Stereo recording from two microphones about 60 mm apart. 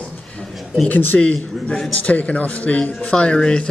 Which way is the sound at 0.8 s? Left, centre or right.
Left.